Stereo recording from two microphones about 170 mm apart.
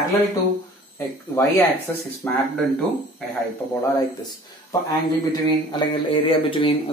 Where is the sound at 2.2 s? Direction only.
10° left (ahead or behind).